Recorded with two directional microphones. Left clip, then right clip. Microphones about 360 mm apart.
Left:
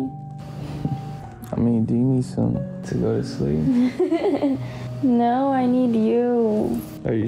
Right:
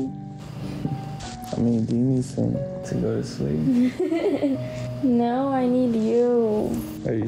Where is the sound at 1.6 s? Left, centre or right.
Left.